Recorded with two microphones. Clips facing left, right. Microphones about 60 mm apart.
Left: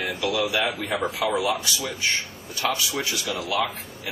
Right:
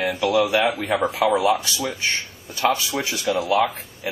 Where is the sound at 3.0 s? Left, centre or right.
Right.